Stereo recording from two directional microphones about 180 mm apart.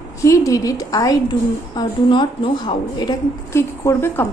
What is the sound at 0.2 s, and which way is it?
A woman's voice, 20° left (ahead or behind).